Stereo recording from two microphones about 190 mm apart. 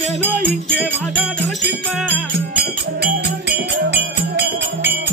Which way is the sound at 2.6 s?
60° right (ahead or behind).